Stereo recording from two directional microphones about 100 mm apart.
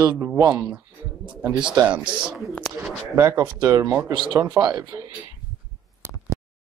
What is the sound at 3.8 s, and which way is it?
Speech, 20° right (ahead or behind).